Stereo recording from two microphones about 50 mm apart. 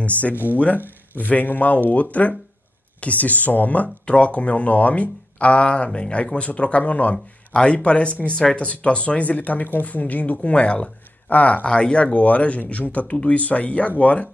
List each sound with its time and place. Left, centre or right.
0.0 s speech: left
7.5 s speech: centre